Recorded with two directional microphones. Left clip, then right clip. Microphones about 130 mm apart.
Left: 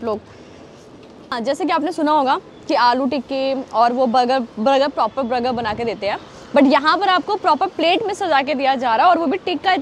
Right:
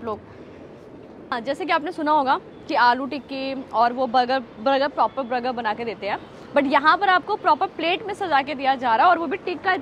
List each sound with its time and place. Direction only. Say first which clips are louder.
1.3 s speech: left 5 dB; 45° left (ahead or behind)
1.7 s speech: left 2 dB; 30° left (ahead or behind)
8.2 s speech: left 5 dB; 50° left (ahead or behind); by 9.4 s 30° left (ahead or behind)
9.4 s speech: left 5 dB; 50° left (ahead or behind)